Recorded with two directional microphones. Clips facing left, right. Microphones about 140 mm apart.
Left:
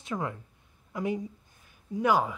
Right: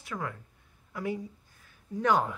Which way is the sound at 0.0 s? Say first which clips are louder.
Left 3 dB; 25° left (ahead or behind).